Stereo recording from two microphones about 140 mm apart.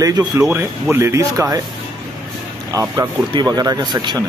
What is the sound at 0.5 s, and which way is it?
Speech, 15° right (ahead or behind).